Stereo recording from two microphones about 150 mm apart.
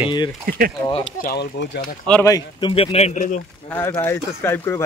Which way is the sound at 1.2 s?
80° left.